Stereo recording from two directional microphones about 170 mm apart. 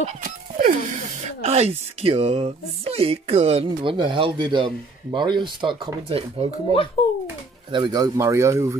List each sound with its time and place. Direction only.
0.2 s a sound: 55° right (ahead or behind)
1.2 s speech: 40° right (ahead or behind)
7.7 s speech: 25° right (ahead or behind)